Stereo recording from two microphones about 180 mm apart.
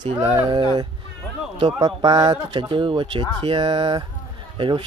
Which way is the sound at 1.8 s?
25° right (ahead or behind).